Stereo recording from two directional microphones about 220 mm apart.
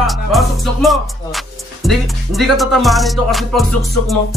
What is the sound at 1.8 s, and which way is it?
Speech, centre (ahead or behind).